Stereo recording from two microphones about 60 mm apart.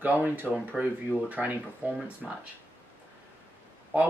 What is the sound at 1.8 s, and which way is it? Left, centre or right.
Speech, right.